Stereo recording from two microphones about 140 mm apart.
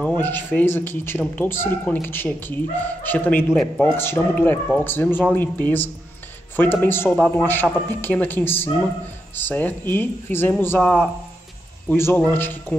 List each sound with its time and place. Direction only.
0.0 s speech: 15° left (ahead or behind)
3.5 s a man's voice: 5° left (ahead or behind)
3.9 s speech: 15° left (ahead or behind)